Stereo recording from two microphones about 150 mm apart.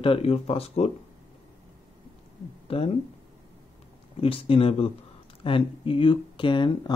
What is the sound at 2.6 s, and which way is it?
Speech, 40° left (ahead or behind).